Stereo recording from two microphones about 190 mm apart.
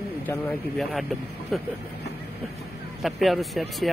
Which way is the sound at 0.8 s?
Centre (ahead or behind).